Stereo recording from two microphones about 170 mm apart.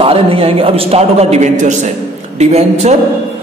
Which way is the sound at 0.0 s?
35° right (ahead or behind).